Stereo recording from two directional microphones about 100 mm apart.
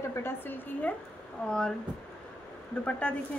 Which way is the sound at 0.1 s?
20° left (ahead or behind).